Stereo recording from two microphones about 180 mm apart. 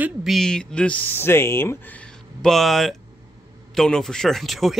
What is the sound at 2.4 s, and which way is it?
Speech, centre (ahead or behind).